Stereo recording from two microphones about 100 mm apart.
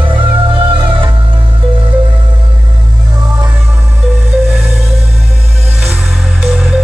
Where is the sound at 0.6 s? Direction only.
60° right (ahead or behind).